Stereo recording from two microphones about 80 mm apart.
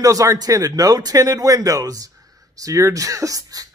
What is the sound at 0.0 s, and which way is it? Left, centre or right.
A man's voice, right.